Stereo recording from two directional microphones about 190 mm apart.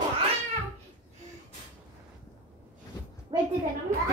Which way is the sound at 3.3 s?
25° right (ahead or behind).